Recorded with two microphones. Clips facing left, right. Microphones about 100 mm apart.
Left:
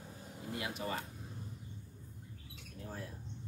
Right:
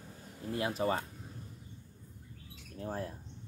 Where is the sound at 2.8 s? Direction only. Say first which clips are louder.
Right 8 dB; 45° right (ahead or behind).